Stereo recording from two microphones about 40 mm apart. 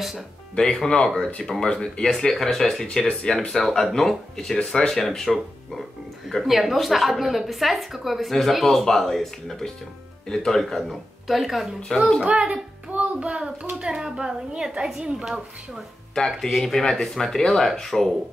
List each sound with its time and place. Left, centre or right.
1.0 s speech: centre
1.6 s speech: left
2.0 s speech: centre
3.6 s a woman's voice: centre
12.3 s a child's voice: right
16.3 s a woman's voice: centre